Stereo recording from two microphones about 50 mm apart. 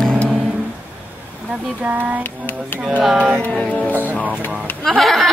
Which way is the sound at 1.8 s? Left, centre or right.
Right.